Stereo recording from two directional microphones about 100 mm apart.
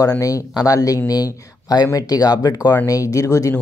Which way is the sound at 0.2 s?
35° left (ahead or behind).